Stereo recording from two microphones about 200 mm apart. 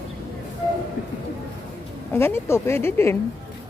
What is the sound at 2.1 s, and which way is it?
Speech, 10° left (ahead or behind).